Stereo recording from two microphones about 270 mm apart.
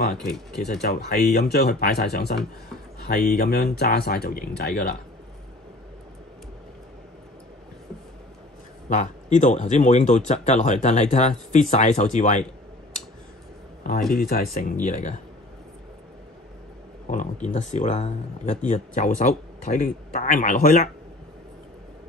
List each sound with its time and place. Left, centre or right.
0.2 s speech: centre
0.7 s speech: left
8.8 s speech: left
14.3 s speech: left
17.1 s speech: left